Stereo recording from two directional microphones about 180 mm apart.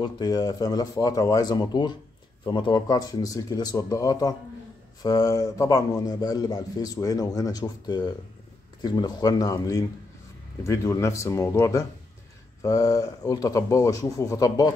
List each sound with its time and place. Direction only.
0.0 s a man's voice: 20° left (ahead or behind)